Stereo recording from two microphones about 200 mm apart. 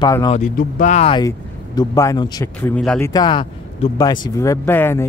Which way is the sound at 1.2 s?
15° left (ahead or behind).